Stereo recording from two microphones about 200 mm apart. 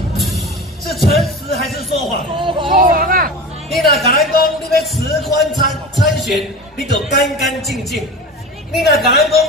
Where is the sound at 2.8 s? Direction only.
45° right (ahead or behind).